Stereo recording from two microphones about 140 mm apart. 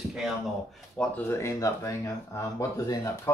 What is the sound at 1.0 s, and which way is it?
Speech, 15° left (ahead or behind).